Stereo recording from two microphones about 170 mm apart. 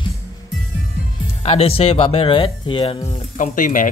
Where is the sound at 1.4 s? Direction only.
35° left (ahead or behind).